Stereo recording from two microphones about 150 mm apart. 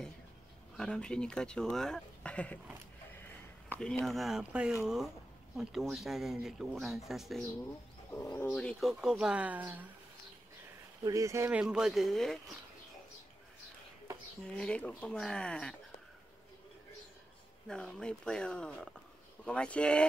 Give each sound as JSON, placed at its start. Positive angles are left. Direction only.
{"t": 0.7, "sound": "speech", "side_deg": 5}
{"t": 3.6, "sound": "speech", "side_deg": 10}
{"t": 8.1, "sound": "speech", "side_deg": 15}
{"t": 8.5, "sound": "speech", "side_deg": 5}
{"t": 11.1, "sound": "speech", "side_deg": -20}
{"t": 11.6, "sound": "speech", "side_deg": -5}
{"t": 14.6, "sound": "speech", "side_deg": 5}
{"t": 17.6, "sound": "speech", "side_deg": 5}